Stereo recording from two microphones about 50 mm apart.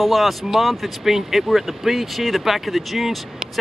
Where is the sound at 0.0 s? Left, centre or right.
Centre.